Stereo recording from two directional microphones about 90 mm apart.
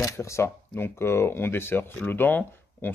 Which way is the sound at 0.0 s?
30° left (ahead or behind).